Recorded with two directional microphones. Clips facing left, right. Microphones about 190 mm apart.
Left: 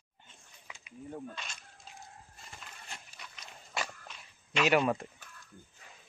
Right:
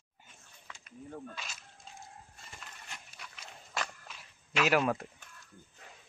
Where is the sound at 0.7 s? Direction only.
10° left (ahead or behind).